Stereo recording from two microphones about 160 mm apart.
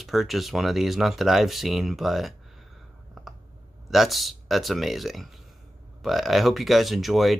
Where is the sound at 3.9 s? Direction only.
Centre (ahead or behind).